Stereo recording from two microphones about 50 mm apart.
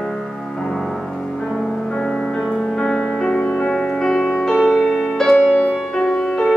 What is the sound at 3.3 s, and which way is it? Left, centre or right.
Music, left.